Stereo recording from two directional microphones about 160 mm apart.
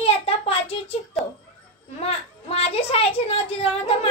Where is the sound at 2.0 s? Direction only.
35° left (ahead or behind).